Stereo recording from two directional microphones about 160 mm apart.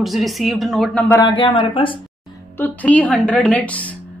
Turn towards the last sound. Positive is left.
turn(degrees=10)  # may be behind; listen again after turning